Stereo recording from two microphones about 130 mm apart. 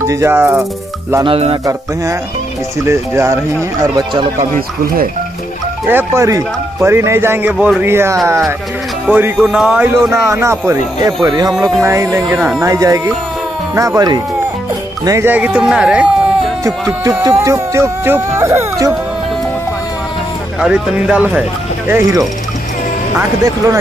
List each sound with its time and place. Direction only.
0.0 s speech: 20° right (ahead or behind)
1.2 s speech: 45° right (ahead or behind)
2.9 s speech: 20° right (ahead or behind)
4.4 s speech: 90° right
5.9 s speech: 20° right (ahead or behind)
7.5 s speech: centre (ahead or behind)
7.8 s speech: 20° right (ahead or behind)
10.0 s speech: 20° right (ahead or behind)
12.4 s speech: 5° right (ahead or behind)
12.6 s speech: 25° right (ahead or behind)
15.3 s speech: 10° right (ahead or behind)
16.6 s speech: 25° right (ahead or behind)
20.6 s speech: 5° right (ahead or behind); by 23.8 s 20° right (ahead or behind)